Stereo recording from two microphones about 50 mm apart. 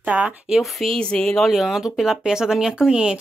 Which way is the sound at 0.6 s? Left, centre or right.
Centre.